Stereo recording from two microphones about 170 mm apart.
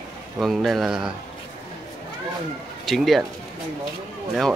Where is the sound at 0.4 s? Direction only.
Centre (ahead or behind).